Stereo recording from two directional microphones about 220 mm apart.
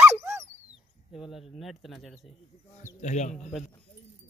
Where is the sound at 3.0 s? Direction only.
35° left (ahead or behind).